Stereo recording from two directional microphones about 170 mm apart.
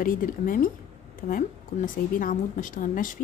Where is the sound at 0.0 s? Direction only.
55° left (ahead or behind).